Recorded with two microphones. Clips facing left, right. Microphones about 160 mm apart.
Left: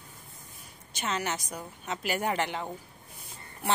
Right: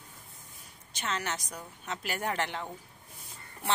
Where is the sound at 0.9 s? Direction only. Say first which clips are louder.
Left 3 dB; 10° left (ahead or behind).